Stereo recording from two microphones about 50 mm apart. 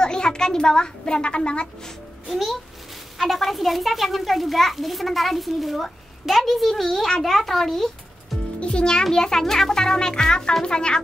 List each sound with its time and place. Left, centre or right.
0.0 s a woman's voice: centre
2.2 s a child's voice: centre
8.5 s a child's voice: left